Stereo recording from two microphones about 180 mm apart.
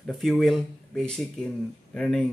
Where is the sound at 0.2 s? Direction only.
Centre (ahead or behind).